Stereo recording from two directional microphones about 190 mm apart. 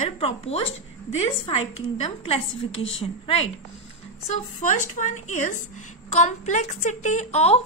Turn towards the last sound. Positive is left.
turn(degrees=35)  # may be behind; listen again after turning